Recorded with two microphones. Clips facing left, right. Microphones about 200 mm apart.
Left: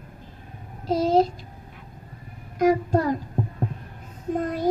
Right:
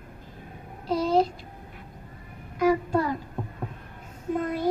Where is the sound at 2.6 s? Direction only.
45° left (ahead or behind).